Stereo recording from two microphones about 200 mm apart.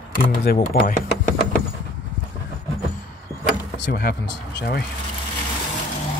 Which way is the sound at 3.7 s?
55° left (ahead or behind).